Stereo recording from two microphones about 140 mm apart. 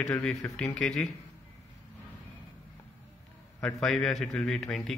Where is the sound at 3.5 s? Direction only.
5° left (ahead or behind).